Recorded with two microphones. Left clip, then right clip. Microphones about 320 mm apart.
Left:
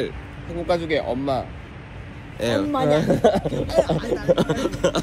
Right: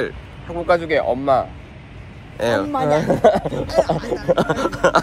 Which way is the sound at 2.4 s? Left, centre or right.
Centre.